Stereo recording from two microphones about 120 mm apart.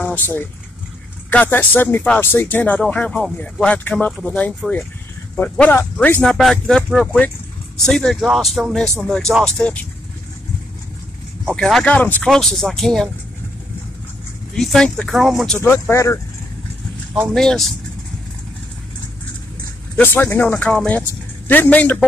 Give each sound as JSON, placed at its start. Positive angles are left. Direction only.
{"t": 0.0, "sound": "speech", "side_deg": 15}
{"t": 11.4, "sound": "speech", "side_deg": 5}
{"t": 14.5, "sound": "speech", "side_deg": 5}
{"t": 15.6, "sound": "speech", "side_deg": 20}
{"t": 17.1, "sound": "speech", "side_deg": 0}
{"t": 20.0, "sound": "speech", "side_deg": 20}